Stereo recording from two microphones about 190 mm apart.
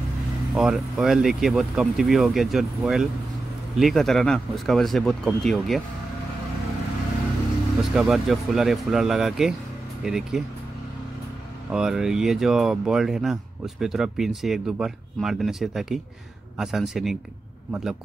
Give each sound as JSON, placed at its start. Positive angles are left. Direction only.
{"t": 0.6, "sound": "speech", "side_deg": -5}
{"t": 7.9, "sound": "speech", "side_deg": 0}
{"t": 11.7, "sound": "speech", "side_deg": -5}